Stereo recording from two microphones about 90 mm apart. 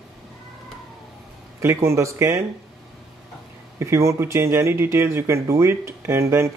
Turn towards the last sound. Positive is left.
turn(degrees=-30)  # may be behind; listen again after turning